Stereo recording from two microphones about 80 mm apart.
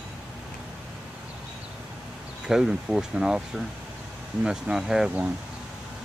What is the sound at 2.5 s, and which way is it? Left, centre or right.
Speech, centre.